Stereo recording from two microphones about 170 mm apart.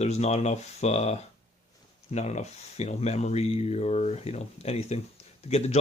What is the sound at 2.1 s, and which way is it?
Speech, 40° left (ahead or behind).